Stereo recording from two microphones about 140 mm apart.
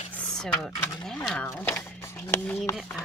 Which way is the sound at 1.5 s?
20° left (ahead or behind).